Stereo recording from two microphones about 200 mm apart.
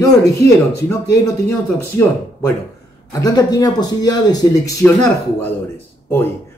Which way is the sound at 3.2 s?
20° left (ahead or behind).